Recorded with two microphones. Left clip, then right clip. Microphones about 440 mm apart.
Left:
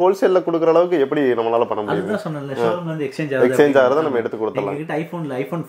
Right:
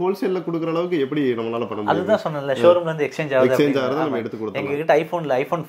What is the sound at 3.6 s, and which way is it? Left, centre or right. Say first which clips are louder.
Speech: left 6 dB; left.